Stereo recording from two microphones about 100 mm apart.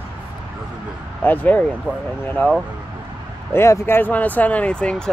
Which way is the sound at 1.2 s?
20° left (ahead or behind).